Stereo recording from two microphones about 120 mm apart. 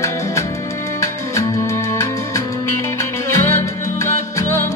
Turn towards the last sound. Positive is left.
turn(degrees=25)  # may be behind; listen again after turning